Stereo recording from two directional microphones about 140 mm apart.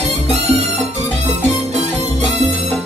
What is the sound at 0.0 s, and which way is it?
Music, 50° right (ahead or behind).